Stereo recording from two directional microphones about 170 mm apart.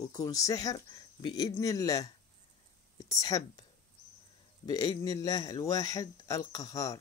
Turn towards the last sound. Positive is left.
turn(degrees=20)  # may be behind; listen again after turning